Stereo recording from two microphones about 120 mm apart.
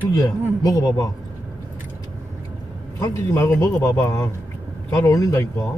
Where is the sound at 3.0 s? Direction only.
25° left (ahead or behind).